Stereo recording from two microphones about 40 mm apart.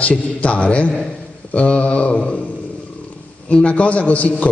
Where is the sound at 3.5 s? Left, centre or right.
Left.